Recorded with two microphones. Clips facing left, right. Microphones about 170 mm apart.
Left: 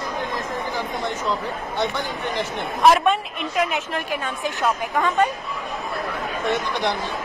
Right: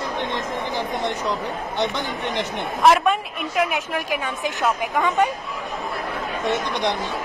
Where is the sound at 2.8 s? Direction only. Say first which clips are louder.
Even; 5° right (ahead or behind).